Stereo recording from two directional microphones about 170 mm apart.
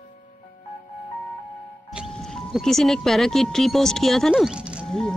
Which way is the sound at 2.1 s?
5° left (ahead or behind).